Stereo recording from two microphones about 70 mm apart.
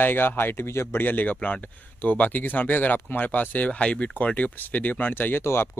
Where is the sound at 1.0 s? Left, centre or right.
Left.